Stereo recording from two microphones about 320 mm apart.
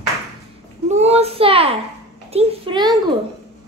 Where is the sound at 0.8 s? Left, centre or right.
Centre.